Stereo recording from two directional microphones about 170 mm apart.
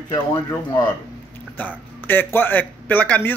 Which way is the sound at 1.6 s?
10° left (ahead or behind).